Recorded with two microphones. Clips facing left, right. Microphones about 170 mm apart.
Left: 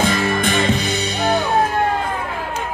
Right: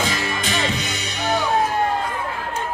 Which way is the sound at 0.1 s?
55° left (ahead or behind).